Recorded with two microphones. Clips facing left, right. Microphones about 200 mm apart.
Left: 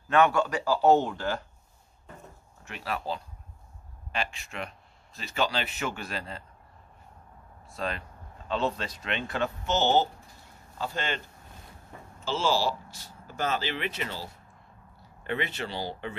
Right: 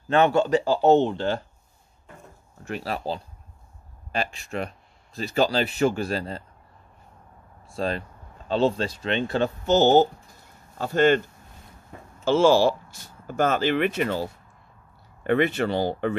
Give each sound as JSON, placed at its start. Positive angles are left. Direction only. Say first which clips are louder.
{"t": 0.1, "sound": "speech", "louder": "right 4 dB", "side_deg": -25}
{"t": 2.6, "sound": "speech", "louder": "right 5 dB", "side_deg": -35}
{"t": 7.6, "sound": "speech", "louder": "right 6 dB", "side_deg": -30}
{"t": 12.3, "sound": "speech", "louder": "right 10 dB", "side_deg": -55}